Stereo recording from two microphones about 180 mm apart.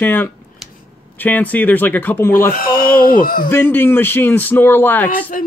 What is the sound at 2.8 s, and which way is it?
Speech, 55° left (ahead or behind).